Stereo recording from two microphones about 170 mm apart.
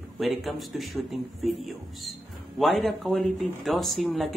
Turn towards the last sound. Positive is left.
turn(degrees=0)  # may be behind; listen again after turning